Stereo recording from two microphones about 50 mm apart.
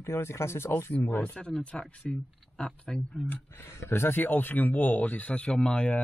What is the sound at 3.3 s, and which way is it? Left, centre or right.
Speech, left.